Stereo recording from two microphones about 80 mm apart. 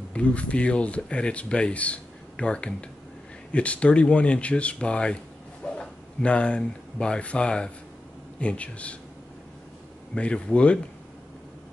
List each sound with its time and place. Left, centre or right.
0.1 s speech: centre
10.1 s speech: centre